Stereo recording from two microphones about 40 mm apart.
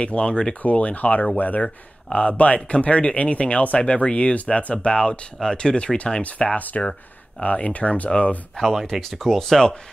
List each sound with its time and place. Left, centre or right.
0.0 s speech: left
0.6 s speech: left
6.2 s speech: left
6.8 s speech: left
7.4 s speech: left
8.5 s speech: centre